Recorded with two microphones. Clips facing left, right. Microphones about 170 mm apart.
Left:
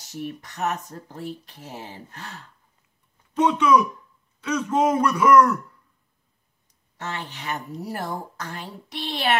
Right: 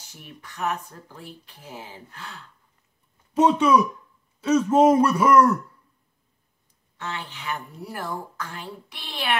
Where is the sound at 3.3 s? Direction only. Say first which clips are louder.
Right 1 dB; 30° right (ahead or behind).